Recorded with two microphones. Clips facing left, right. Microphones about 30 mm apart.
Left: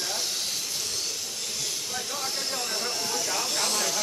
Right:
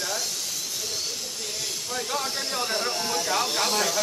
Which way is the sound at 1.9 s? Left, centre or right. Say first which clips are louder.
Right 6 dB; centre.